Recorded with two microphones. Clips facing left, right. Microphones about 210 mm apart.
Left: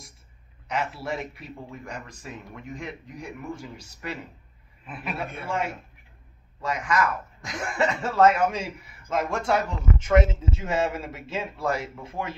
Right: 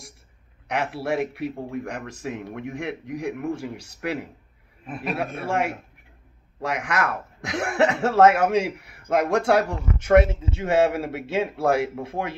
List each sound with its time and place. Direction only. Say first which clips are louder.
0.7 s a man's voice: right 4 dB; 65° right (ahead or behind)
4.8 s a man's voice: right 5 dB; 45° right (ahead or behind)
6.6 s a man's voice: even; 70° right (ahead or behind)